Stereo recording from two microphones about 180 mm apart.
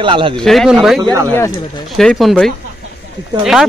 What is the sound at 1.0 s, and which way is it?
Speech, 15° right (ahead or behind).